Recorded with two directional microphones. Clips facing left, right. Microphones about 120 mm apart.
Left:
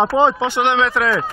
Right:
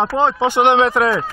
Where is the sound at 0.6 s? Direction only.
45° right (ahead or behind).